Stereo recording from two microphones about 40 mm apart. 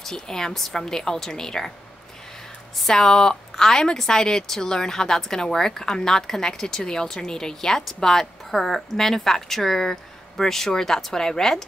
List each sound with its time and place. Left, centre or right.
0.0 s speech: centre
2.9 s speech: centre